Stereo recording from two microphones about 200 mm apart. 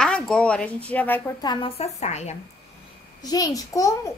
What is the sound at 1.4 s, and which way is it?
Speech, 30° left (ahead or behind).